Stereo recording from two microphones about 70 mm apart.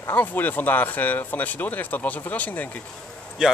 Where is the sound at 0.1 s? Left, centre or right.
Left.